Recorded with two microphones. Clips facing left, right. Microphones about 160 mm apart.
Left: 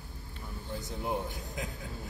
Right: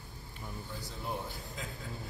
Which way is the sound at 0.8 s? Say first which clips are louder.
Left 6 dB; 20° left (ahead or behind).